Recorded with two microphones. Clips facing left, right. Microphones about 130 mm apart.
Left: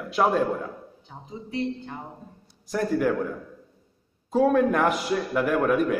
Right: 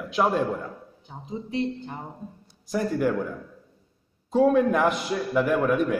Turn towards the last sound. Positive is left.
turn(degrees=0)  # may be behind; listen again after turning